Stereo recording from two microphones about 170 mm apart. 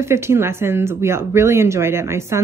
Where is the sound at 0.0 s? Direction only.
15° right (ahead or behind).